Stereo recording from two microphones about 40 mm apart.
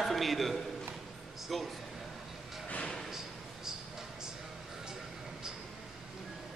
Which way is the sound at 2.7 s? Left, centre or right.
Left.